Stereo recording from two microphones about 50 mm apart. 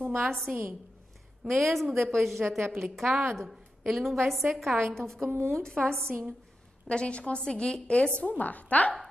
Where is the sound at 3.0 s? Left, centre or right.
Centre.